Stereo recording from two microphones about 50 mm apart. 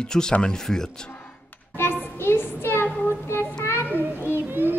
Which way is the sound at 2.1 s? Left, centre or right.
Left.